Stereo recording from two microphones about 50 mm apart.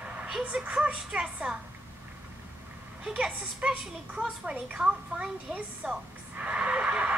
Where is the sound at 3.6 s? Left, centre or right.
Centre.